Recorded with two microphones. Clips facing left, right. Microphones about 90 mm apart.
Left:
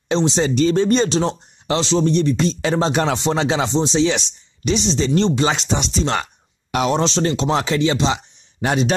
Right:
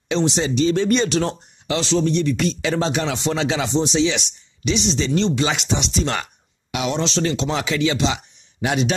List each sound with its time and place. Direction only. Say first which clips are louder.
0.1 s speech: left 2 dB; 35° left (ahead or behind)
0.6 s speech: left 2 dB; 45° left (ahead or behind)
0.8 s speech: left 2 dB; 30° left (ahead or behind)